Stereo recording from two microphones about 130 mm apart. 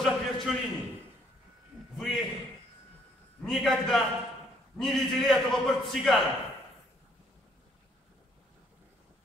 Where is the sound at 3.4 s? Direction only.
Centre (ahead or behind).